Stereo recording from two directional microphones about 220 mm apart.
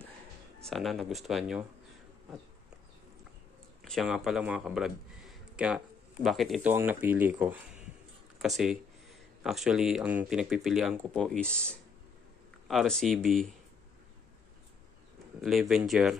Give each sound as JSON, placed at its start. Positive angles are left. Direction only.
{"t": 0.6, "sound": "speech", "side_deg": 0}
{"t": 3.8, "sound": "speech", "side_deg": 0}
{"t": 12.6, "sound": "speech", "side_deg": 0}
{"t": 15.7, "sound": "speech", "side_deg": 0}